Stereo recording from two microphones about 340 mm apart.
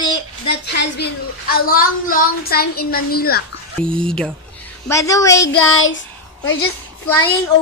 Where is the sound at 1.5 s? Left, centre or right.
Left.